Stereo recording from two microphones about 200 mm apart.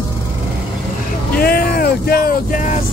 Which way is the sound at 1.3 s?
50° left (ahead or behind).